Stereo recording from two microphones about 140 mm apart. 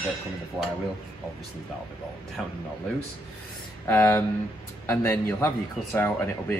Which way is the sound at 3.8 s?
15° left (ahead or behind).